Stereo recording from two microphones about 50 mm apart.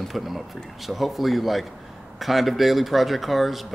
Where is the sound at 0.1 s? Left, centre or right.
Centre.